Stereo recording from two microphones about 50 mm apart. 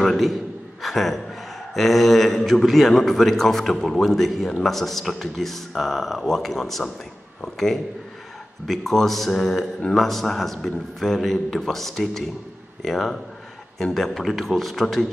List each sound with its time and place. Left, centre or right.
0.0 s a man's voice: centre